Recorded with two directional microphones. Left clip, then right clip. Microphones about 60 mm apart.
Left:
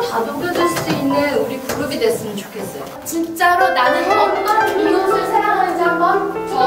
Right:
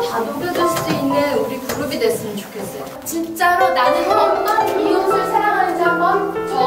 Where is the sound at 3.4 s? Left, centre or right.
Centre.